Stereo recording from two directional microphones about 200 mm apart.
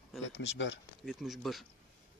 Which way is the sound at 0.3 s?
65° left (ahead or behind).